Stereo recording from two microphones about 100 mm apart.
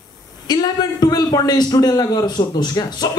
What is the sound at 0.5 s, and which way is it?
A man's voice, 45° left (ahead or behind).